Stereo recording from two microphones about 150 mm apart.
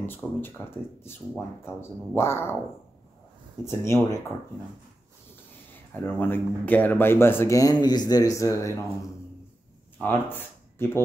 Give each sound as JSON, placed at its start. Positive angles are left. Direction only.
{"t": 0.0, "sound": "speech", "side_deg": 15}
{"t": 3.6, "sound": "speech", "side_deg": 20}
{"t": 6.0, "sound": "speech", "side_deg": 15}
{"t": 9.9, "sound": "speech", "side_deg": 15}